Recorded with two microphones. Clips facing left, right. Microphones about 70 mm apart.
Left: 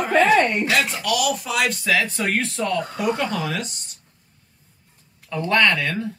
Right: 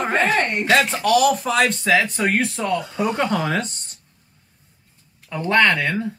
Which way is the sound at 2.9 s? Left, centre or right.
Right.